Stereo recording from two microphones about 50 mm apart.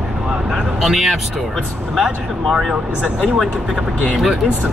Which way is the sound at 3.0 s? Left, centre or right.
Right.